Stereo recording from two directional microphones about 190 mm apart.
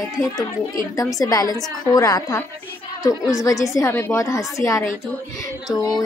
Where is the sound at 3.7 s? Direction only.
15° left (ahead or behind).